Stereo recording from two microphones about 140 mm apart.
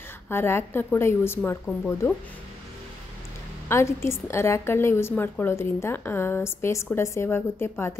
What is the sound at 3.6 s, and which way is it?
A woman's voice, 20° left (ahead or behind).